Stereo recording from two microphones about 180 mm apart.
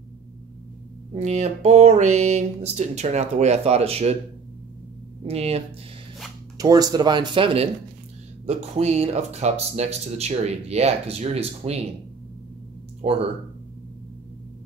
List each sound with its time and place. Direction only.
1.1 s speech: 40° right (ahead or behind)
5.2 s speech: 35° right (ahead or behind)
6.6 s speech: 20° right (ahead or behind); by 11.8 s 35° right (ahead or behind)
13.0 s speech: 35° right (ahead or behind)